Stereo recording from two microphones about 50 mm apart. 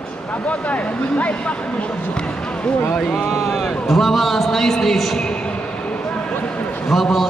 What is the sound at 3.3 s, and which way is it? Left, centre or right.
A man's voice, centre.